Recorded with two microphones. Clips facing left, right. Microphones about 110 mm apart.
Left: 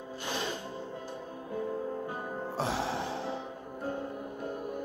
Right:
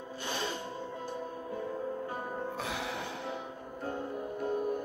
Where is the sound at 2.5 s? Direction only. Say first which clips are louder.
Left 5 dB; 30° left (ahead or behind).